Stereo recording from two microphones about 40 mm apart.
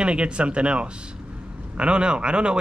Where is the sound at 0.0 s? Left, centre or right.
Right.